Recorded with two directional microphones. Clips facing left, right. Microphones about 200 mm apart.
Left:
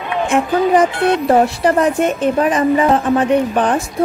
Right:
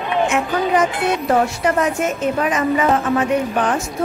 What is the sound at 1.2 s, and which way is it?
A woman's voice, 35° left (ahead or behind).